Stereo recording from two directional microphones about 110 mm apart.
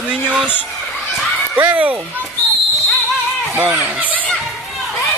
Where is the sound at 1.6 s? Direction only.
15° right (ahead or behind).